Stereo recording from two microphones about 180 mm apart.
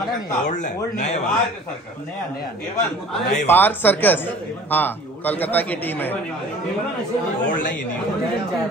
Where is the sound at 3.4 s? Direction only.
10° left (ahead or behind).